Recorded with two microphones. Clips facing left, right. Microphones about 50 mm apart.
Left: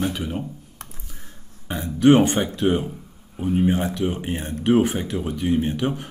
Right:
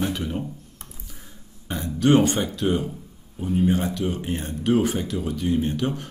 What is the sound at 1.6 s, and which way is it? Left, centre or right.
Speech, left.